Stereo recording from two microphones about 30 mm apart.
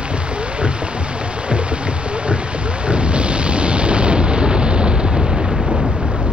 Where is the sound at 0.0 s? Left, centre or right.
Right.